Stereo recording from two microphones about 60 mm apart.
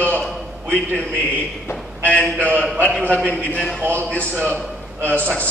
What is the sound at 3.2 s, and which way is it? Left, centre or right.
A man's voice, left.